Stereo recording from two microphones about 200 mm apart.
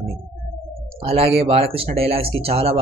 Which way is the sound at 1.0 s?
30° right (ahead or behind).